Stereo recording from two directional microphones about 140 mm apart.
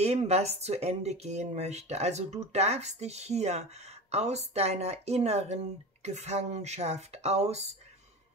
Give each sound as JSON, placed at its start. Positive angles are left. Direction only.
{"t": 0.0, "sound": "speech", "side_deg": -50}